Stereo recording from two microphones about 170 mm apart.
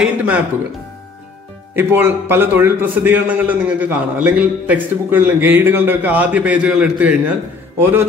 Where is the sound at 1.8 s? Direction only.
15° right (ahead or behind).